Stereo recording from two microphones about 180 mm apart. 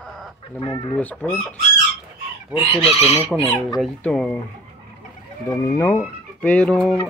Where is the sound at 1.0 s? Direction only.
10° left (ahead or behind).